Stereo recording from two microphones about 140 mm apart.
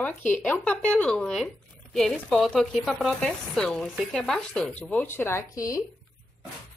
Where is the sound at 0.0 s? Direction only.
10° left (ahead or behind).